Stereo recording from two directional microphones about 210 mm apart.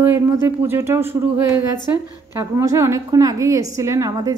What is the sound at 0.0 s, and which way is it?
A woman's voice, 10° right (ahead or behind).